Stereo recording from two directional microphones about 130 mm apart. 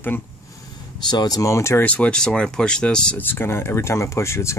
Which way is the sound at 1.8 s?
10° left (ahead or behind).